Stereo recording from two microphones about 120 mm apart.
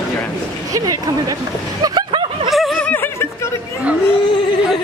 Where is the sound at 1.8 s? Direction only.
40° right (ahead or behind).